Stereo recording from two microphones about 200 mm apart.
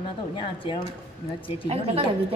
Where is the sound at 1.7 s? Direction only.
30° right (ahead or behind).